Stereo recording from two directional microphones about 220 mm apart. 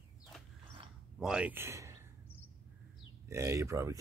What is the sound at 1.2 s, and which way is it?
Speech, 5° right (ahead or behind).